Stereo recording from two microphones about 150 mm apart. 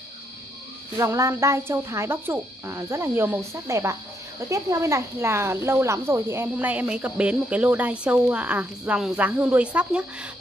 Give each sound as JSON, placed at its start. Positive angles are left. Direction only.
{"t": 0.9, "sound": "speech", "side_deg": -20}